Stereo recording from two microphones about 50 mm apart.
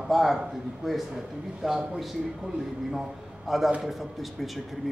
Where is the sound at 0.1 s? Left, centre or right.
Centre.